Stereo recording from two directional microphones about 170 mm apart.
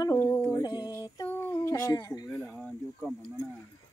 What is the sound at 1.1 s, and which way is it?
Humming, 15° left (ahead or behind).